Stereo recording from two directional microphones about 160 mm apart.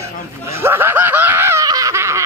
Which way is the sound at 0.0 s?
15° right (ahead or behind).